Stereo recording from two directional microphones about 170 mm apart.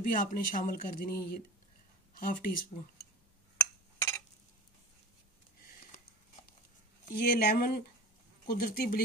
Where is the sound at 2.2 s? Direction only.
55° left (ahead or behind).